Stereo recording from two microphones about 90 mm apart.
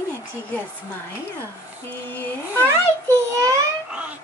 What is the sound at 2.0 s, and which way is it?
Speech, 15° left (ahead or behind).